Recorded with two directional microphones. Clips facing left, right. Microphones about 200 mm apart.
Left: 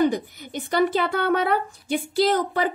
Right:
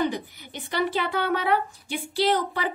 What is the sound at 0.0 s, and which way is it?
A woman's voice, 45° left (ahead or behind).